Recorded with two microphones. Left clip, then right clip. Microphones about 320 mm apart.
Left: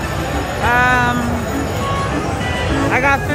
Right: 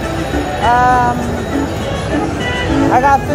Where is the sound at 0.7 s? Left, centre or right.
Centre.